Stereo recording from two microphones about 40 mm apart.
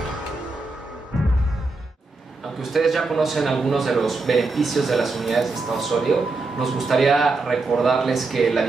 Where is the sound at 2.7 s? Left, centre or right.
Centre.